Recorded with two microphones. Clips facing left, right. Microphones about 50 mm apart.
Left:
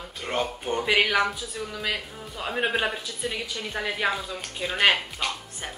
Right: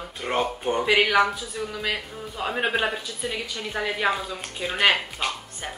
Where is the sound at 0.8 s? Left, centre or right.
Centre.